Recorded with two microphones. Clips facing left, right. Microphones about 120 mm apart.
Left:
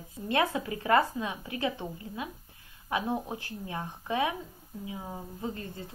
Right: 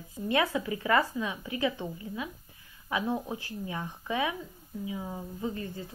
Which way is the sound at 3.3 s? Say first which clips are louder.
Right 2 dB; 55° left (ahead or behind).